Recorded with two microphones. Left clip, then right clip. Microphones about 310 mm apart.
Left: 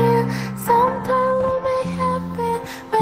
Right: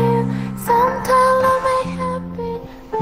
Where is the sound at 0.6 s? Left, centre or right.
Centre; by 1.8 s right.